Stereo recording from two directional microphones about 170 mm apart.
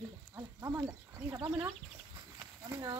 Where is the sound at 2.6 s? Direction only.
20° right (ahead or behind).